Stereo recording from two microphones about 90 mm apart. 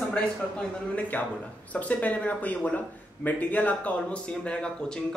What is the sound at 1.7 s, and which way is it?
Speech, 15° left (ahead or behind).